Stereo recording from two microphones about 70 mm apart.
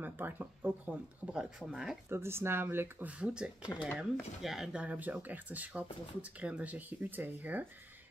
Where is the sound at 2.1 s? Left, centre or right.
Right.